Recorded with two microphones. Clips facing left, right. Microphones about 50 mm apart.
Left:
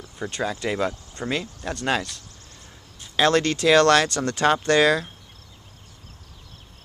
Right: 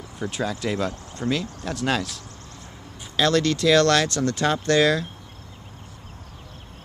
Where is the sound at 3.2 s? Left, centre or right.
Left.